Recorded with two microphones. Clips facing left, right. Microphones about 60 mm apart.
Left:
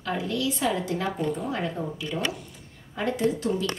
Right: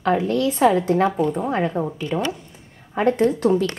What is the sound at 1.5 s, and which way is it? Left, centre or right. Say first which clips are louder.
Speech: right 7 dB; right.